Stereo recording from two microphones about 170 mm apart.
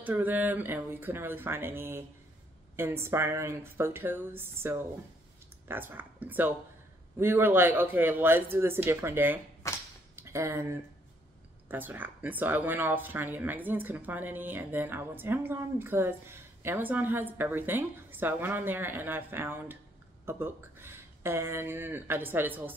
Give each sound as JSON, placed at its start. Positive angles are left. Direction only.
{"t": 0.0, "sound": "speech", "side_deg": -10}
{"t": 9.6, "sound": "whip", "side_deg": 15}
{"t": 10.1, "sound": "speech", "side_deg": -15}
{"t": 11.7, "sound": "speech", "side_deg": -10}